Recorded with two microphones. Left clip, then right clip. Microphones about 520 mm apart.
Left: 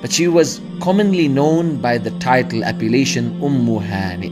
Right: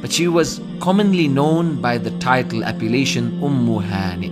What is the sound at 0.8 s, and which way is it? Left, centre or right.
A man's voice, centre.